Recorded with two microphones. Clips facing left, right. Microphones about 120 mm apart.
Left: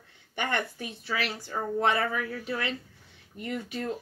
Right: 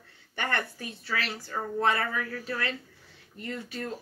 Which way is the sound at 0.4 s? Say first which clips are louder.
Left 1 dB; 15° left (ahead or behind).